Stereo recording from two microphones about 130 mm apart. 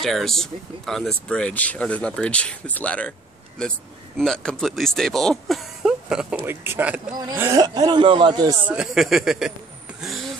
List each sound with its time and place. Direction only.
0.0 s speech: 5° left (ahead or behind)
6.4 s speech: 15° right (ahead or behind)
7.3 s speech: 25° right (ahead or behind)
8.6 s speech: 5° right (ahead or behind)